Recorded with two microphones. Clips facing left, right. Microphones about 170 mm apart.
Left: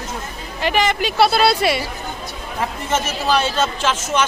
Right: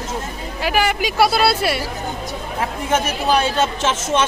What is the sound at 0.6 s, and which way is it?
A woman's voice, 5° right (ahead or behind).